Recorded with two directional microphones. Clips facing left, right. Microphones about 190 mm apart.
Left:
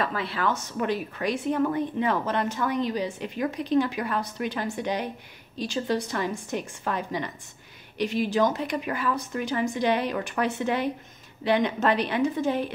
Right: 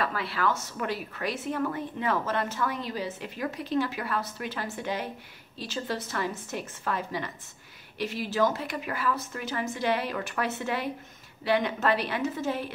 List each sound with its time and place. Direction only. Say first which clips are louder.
0.0 s a woman's voice: left 2 dB; 20° left (ahead or behind)